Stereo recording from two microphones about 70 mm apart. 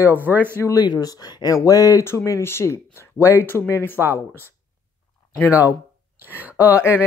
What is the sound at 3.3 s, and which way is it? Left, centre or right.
Speech, left.